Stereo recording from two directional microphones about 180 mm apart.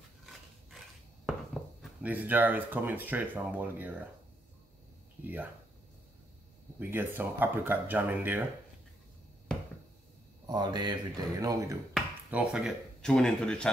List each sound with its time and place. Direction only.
0.7 s a sound: centre (ahead or behind)
5.2 s speech: 10° right (ahead or behind)
6.8 s speech: 10° right (ahead or behind)
10.4 s speech: 25° right (ahead or behind)
11.9 s speech: 5° right (ahead or behind)